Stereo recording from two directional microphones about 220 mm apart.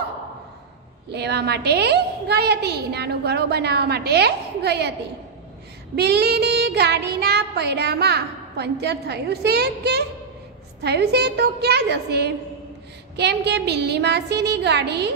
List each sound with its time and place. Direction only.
1.1 s child singing: 50° right (ahead or behind)
5.9 s child singing: 45° right (ahead or behind)